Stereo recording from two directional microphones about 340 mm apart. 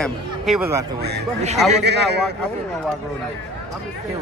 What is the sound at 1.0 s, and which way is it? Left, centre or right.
Speech, right.